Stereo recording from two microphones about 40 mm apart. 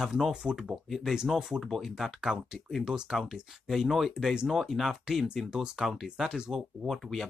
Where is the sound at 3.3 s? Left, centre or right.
Centre.